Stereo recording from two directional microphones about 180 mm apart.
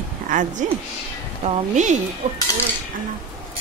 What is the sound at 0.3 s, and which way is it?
A woman's voice, 45° right (ahead or behind).